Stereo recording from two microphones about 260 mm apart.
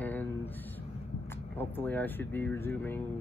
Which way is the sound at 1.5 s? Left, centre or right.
Centre.